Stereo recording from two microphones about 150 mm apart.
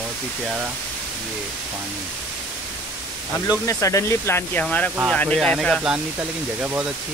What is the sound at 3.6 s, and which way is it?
Speech, 20° left (ahead or behind).